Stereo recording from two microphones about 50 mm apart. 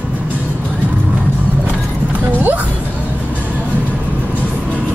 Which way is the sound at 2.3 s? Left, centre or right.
Right.